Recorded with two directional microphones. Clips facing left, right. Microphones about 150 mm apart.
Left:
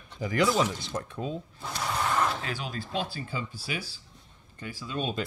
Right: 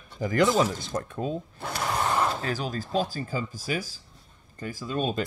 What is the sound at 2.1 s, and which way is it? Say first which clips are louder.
Speech: right 2 dB; 35° right (ahead or behind).